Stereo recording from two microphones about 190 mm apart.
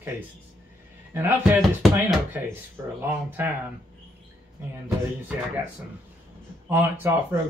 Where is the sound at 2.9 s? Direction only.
10° right (ahead or behind).